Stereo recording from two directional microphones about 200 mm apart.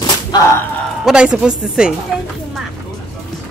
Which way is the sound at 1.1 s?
5° right (ahead or behind).